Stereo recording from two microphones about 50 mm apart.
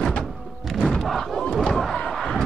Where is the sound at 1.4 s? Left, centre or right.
Centre.